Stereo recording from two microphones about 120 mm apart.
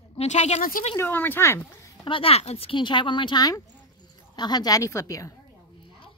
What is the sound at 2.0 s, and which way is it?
Speech, 50° left (ahead or behind).